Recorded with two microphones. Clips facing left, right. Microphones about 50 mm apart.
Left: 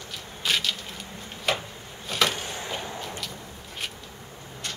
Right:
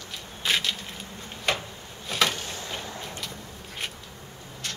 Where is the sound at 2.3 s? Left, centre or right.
Left.